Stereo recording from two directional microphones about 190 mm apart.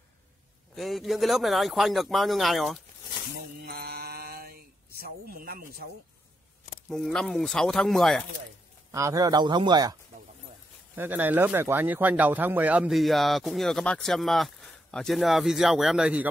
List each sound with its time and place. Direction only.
0.7 s speech: centre (ahead or behind)
3.6 s a sound: 55° right (ahead or behind)
6.9 s speech: centre (ahead or behind)
8.9 s a man's voice: 15° right (ahead or behind)
11.0 s speech: 10° right (ahead or behind)